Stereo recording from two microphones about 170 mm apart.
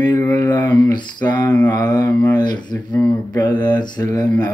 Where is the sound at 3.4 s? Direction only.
25° left (ahead or behind).